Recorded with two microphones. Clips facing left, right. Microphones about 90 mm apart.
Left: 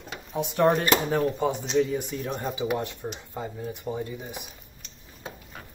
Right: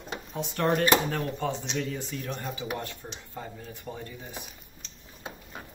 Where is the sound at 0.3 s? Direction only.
15° left (ahead or behind).